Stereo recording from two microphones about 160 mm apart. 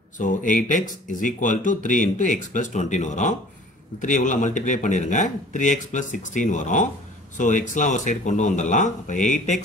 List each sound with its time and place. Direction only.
0.2 s speech: 55° left (ahead or behind)